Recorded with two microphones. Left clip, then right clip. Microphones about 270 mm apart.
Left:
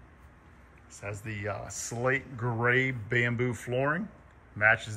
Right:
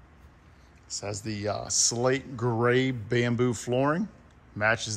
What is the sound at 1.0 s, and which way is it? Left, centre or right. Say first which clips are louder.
Speech: right 3 dB; centre.